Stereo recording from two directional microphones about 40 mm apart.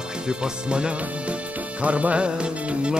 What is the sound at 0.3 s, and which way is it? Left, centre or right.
Music, right.